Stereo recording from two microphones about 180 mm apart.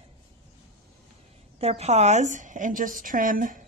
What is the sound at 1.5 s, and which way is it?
Speech, 35° right (ahead or behind).